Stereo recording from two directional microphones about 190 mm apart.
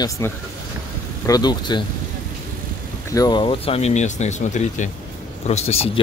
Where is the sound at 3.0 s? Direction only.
20° left (ahead or behind).